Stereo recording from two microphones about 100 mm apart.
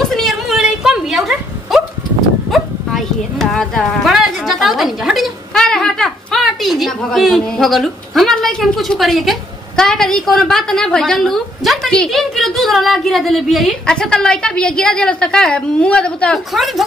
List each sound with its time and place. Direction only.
0.1 s a sound: centre (ahead or behind)
2.5 s a woman's voice: centre (ahead or behind)
16.5 s speech: centre (ahead or behind)